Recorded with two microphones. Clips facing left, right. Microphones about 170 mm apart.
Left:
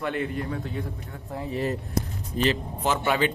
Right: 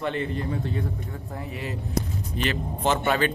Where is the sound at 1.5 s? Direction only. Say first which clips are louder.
Left 3 dB; 40° left (ahead or behind).